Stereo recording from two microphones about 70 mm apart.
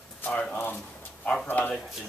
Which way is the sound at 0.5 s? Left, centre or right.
Left.